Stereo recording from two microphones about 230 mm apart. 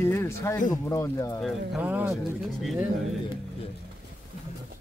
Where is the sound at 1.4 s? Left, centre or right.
Centre.